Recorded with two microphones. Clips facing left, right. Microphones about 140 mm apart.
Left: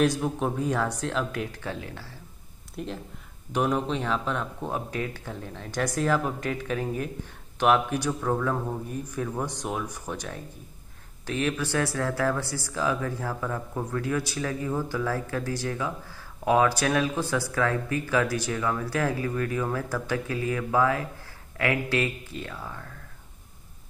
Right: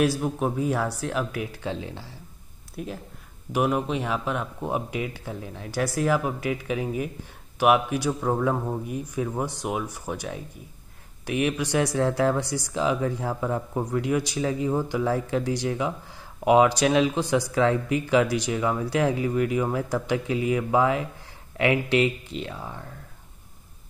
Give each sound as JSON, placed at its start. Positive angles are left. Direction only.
{"t": 0.0, "sound": "speech", "side_deg": -5}
{"t": 2.7, "sound": "speech", "side_deg": -5}